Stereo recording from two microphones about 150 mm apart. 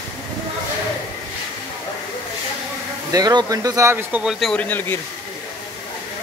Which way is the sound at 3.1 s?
25° right (ahead or behind).